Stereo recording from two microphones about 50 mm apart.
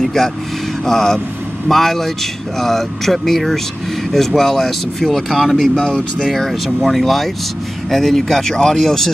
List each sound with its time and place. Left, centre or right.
0.0 s speech: centre
5.8 s speech: centre
6.3 s speech: centre